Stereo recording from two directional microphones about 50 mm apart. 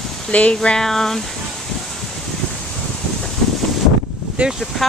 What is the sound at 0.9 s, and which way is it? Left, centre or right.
Speech, centre.